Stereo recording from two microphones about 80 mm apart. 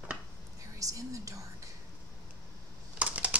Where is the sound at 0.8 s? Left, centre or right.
Right.